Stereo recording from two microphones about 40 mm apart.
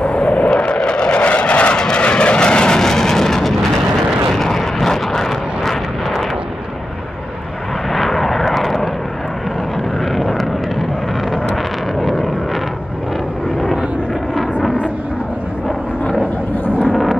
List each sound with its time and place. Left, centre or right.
0.0 s vehicle: left
2.8 s vehicle: centre
7.9 s vehicle: centre
10.1 s vehicle: centre
12.0 s vehicle: centre